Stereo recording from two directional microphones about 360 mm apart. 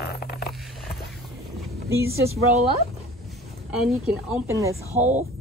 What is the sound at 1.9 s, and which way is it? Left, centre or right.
Speech, centre.